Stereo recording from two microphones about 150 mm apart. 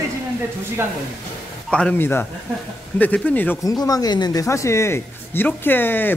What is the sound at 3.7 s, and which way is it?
Speech, 25° left (ahead or behind).